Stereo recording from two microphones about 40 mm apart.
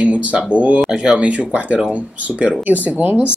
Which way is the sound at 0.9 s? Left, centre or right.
Right.